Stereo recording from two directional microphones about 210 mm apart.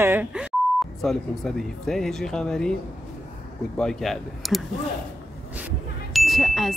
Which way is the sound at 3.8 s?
Centre (ahead or behind).